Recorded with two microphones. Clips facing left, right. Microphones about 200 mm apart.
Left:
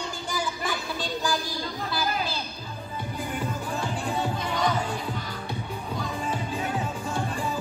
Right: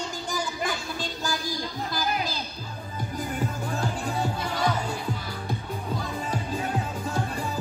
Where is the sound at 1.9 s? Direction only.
40° right (ahead or behind).